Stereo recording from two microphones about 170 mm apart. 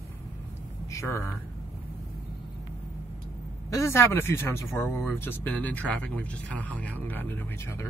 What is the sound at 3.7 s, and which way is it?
Speech, 15° left (ahead or behind).